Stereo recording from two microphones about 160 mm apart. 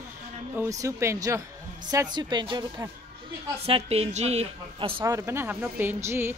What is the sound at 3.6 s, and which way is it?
A woman's voice, 40° right (ahead or behind).